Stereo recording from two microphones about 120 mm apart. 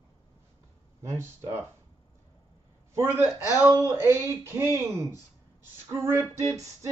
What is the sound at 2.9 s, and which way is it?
A man's voice, 20° right (ahead or behind).